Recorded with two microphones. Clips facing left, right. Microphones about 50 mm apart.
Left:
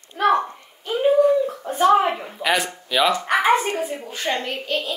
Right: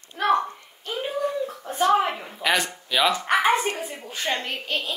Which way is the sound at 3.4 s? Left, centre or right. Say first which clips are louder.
Left 3 dB; centre.